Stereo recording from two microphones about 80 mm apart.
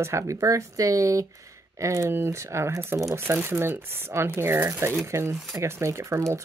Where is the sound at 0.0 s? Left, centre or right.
Right.